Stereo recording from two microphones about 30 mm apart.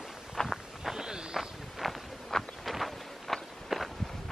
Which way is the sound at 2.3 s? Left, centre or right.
Centre.